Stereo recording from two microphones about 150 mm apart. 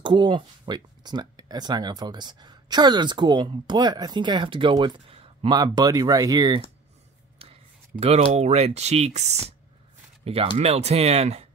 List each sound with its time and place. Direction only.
0.0 s speech: 30° right (ahead or behind)
8.0 s speech: 45° right (ahead or behind)